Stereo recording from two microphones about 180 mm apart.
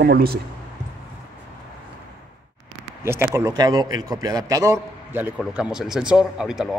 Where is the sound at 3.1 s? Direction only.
15° right (ahead or behind).